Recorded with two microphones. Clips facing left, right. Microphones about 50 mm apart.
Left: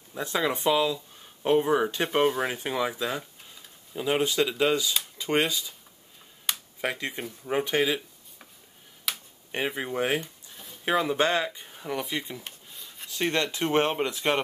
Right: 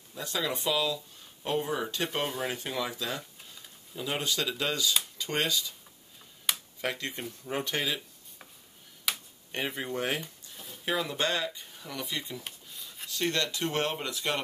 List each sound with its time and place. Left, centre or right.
0.1 s speech: left
6.5 s computer keyboard: centre
6.8 s speech: centre
9.1 s computer keyboard: centre
9.5 s speech: centre
10.5 s a sound: centre
10.9 s speech: centre
12.4 s rub: centre
13.1 s speech: left